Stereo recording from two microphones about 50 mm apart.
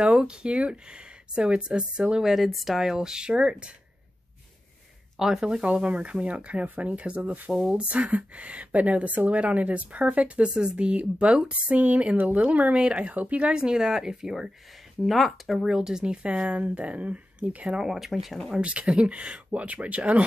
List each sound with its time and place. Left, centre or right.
0.0 s a woman's voice: centre
2.2 s speech: centre; by 3.7 s right
5.2 s a woman's voice: centre; by 13.5 s right
13.5 s a woman's voice: centre
17.7 s speech: centre
18.6 s a woman's voice: right